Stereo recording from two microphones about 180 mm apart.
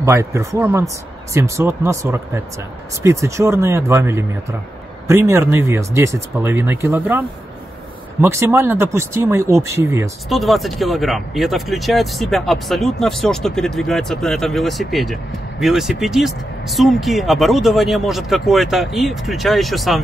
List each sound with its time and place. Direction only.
0.0 s speech: 15° right (ahead or behind)
10.3 s speech: centre (ahead or behind)